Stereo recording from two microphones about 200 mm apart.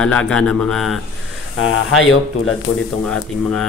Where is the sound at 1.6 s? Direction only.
85° left.